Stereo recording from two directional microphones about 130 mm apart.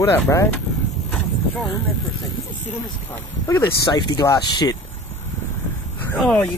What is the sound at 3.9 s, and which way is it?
Speech, 35° left (ahead or behind).